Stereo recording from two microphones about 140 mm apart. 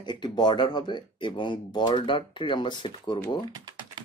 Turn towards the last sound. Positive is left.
turn(degrees=35)  # may be behind; listen again after turning